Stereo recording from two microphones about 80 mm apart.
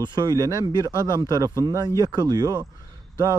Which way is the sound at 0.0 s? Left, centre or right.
Right.